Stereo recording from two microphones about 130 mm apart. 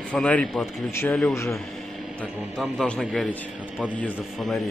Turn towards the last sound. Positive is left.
turn(degrees=5)  # may be behind; listen again after turning